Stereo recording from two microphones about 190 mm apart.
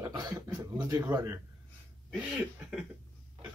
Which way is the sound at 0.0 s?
20° right (ahead or behind).